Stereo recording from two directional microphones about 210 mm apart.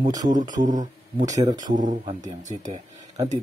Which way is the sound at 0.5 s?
35° right (ahead or behind).